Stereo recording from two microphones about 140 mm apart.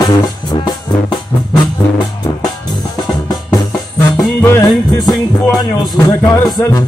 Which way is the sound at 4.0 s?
20° left (ahead or behind).